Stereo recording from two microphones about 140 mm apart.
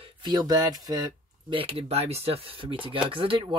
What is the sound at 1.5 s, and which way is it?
Speech, 40° right (ahead or behind).